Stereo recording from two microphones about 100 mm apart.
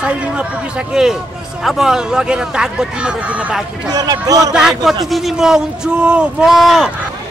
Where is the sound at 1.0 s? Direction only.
5° right (ahead or behind).